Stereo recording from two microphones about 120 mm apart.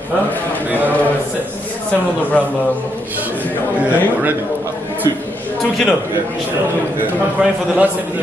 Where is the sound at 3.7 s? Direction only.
10° right (ahead or behind).